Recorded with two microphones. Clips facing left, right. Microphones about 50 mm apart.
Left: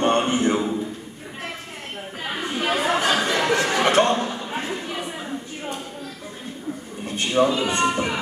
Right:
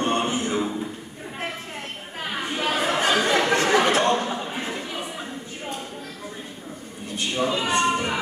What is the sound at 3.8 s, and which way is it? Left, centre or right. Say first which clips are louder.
Chuckle: left 2 dB; left.